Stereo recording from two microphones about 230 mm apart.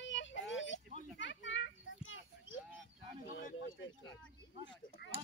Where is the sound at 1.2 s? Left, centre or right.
Left.